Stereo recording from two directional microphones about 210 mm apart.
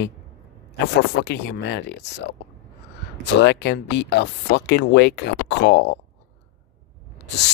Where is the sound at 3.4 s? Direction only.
55° left (ahead or behind).